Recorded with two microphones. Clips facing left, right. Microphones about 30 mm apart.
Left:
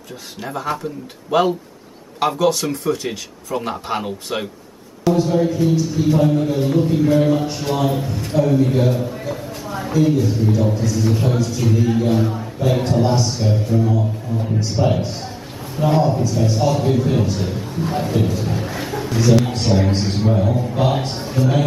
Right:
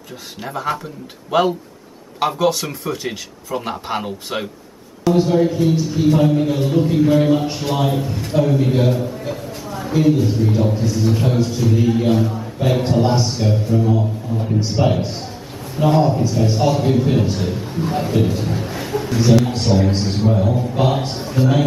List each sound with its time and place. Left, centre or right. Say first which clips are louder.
0.4 s a man's voice: right 1 dB; centre
5.1 s a man's voice: right 2 dB; centre
9.7 s a sound: left 1 dB; centre
10.0 s a man's voice: right 3 dB; centre
12.2 s a man's voice: even; centre
12.8 s a man's voice: right 1 dB; centre
13.5 s a man's voice: right 1 dB; centre